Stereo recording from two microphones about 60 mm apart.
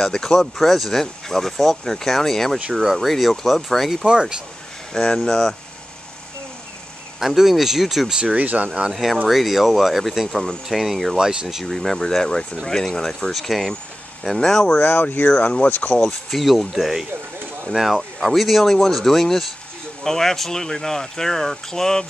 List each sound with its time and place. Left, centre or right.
0.0 s speech: centre
2.7 s speech: centre
4.0 s speech: centre
4.9 s speech: centre
7.2 s speech: centre
8.2 s speech: right
8.9 s speech: centre
14.8 s speech: left
16.3 s speech: centre